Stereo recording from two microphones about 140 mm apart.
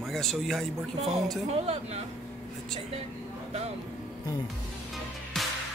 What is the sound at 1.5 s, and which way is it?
Speech, 50° right (ahead or behind).